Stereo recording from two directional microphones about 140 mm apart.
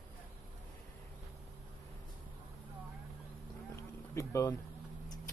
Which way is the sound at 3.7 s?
20° left (ahead or behind).